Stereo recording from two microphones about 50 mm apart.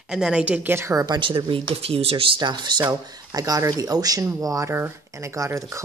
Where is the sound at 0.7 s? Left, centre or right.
Right.